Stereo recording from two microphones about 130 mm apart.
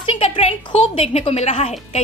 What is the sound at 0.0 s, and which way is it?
Speech, 50° left (ahead or behind).